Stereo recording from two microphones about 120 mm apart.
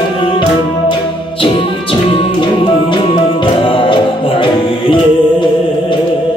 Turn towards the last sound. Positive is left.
turn(degrees=40)  # may be behind; listen again after turning